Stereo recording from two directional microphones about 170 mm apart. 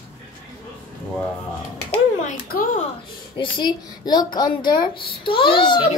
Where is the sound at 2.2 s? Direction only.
55° left (ahead or behind).